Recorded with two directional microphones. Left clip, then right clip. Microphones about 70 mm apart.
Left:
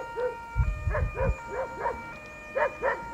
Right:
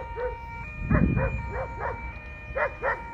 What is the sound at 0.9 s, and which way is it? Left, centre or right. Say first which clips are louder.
Dog: right 3 dB; centre.